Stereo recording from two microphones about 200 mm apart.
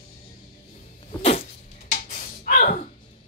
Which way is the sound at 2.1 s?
45° left (ahead or behind).